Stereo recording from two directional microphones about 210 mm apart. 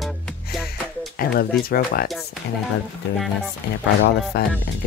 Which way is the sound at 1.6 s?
45° left (ahead or behind).